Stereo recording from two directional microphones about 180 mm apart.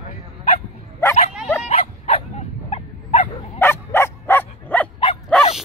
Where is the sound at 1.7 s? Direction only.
35° left (ahead or behind).